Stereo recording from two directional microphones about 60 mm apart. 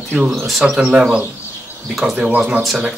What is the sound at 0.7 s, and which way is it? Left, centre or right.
Speech, right.